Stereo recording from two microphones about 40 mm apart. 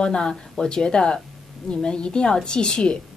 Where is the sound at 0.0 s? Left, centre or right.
Centre.